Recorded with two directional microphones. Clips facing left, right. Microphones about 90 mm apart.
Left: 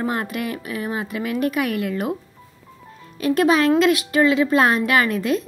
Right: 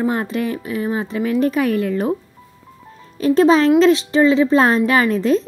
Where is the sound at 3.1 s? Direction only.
30° right (ahead or behind).